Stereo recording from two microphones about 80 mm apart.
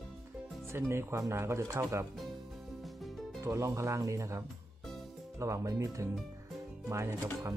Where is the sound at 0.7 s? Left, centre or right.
Right.